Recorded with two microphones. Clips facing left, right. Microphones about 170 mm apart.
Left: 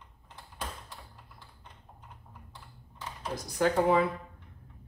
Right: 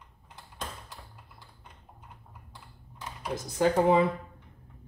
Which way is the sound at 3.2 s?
20° right (ahead or behind).